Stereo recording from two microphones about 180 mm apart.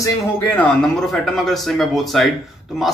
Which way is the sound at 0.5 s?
5° left (ahead or behind).